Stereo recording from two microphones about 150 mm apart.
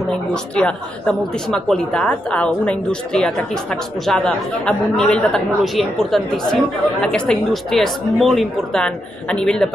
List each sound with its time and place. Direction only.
0.1 s a woman's voice: 10° left (ahead or behind)